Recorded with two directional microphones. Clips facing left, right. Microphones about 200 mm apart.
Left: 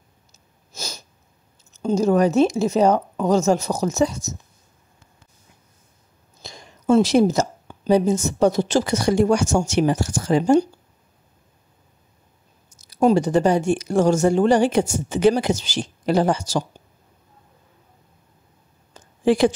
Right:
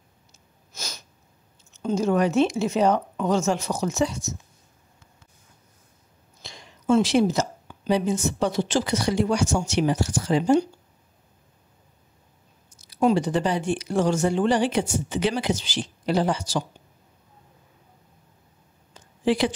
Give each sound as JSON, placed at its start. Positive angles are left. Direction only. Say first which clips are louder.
{"t": 0.3, "sound": "sniff", "louder": "left 4 dB", "side_deg": 30}
{"t": 1.7, "sound": "speech", "louder": "left 4 dB", "side_deg": 35}
{"t": 6.4, "sound": "a woman's voice", "louder": "left 3 dB", "side_deg": 40}
{"t": 12.6, "sound": "speech", "louder": "left 4 dB", "side_deg": 45}
{"t": 18.9, "sound": "a sound", "louder": "left 5 dB", "side_deg": 45}